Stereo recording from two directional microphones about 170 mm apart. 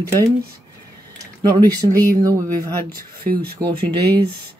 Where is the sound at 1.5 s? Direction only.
25° right (ahead or behind).